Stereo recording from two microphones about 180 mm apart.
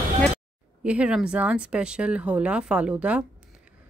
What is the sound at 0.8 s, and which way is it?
Speech, 5° right (ahead or behind).